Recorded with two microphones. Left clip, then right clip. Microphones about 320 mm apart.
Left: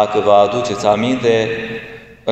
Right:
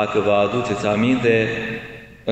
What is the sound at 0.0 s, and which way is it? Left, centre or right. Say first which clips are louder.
A man's voice: left 6 dB; centre.